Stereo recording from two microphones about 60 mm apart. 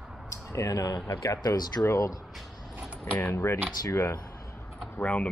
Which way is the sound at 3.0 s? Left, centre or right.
Left.